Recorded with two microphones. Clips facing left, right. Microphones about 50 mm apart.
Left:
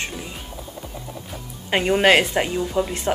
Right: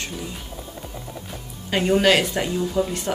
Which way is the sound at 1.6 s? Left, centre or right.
Left.